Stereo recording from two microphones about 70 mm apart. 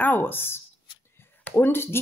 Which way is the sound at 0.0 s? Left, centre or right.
Left.